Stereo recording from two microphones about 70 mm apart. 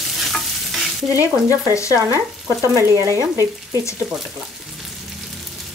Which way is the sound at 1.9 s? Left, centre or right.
Right.